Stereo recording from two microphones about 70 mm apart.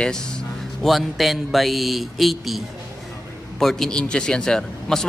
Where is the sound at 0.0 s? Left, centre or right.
Centre.